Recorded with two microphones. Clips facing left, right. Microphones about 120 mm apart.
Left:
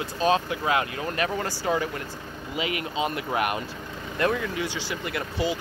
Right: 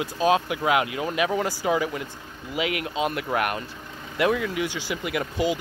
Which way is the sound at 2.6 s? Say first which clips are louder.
Right 3 dB; 90° right.